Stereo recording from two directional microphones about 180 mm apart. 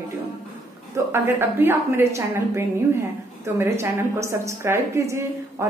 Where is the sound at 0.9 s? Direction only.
15° right (ahead or behind).